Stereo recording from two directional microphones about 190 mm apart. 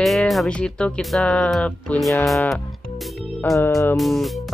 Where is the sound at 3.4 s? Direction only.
15° left (ahead or behind).